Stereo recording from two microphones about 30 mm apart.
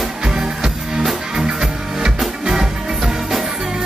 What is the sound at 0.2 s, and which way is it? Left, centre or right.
Music, centre.